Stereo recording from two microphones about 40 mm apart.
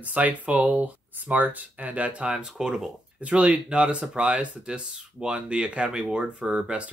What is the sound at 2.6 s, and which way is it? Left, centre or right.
Speech, right.